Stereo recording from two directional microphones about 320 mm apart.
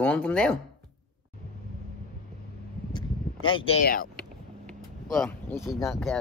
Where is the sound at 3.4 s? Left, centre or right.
Centre.